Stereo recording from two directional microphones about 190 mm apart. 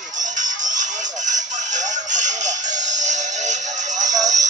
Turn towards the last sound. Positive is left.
turn(degrees=-40)  # may be behind; listen again after turning